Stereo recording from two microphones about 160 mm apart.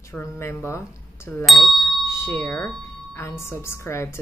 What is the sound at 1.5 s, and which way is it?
Doorbell, centre (ahead or behind).